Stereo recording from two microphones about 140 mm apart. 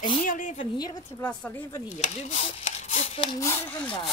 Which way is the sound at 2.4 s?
50° left (ahead or behind).